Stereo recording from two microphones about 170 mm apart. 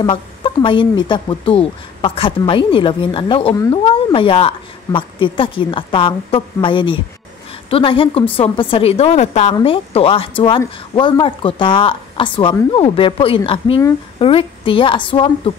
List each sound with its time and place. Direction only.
0.0 s speech: 30° left (ahead or behind)